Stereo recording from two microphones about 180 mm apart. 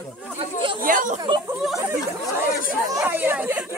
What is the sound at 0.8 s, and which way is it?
Speech, 45° right (ahead or behind).